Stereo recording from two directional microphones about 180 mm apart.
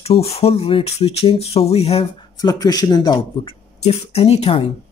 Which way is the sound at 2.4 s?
20° left (ahead or behind).